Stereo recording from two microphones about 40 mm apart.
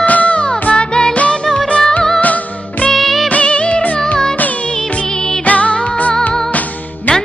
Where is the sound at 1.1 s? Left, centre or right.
Left.